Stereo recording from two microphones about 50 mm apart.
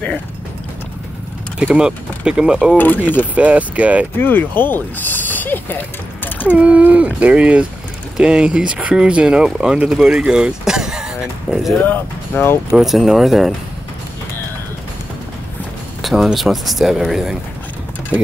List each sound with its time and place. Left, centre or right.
1.8 s speech: centre
2.8 s speech: left
3.3 s speech: right
4.2 s speech: left
5.8 s a sound: left
6.5 s speech: right; by 10.2 s centre
10.2 s speech: centre
10.6 s a sound: centre
11.5 s speech: centre
11.8 s speech: left
12.7 s speech: centre
16.0 s a sound: centre
16.3 s speech: centre